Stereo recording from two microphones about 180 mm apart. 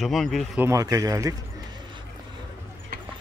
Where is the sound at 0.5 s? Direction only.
15° right (ahead or behind).